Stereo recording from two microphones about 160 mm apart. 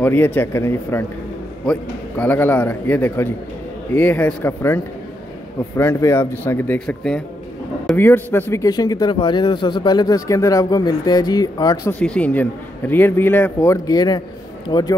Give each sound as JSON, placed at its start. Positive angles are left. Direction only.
{"t": 0.0, "sound": "a man's voice", "side_deg": 10}
{"t": 12.0, "sound": "a man's voice", "side_deg": 5}